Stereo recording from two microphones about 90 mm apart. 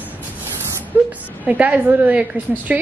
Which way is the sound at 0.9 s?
20° right (ahead or behind).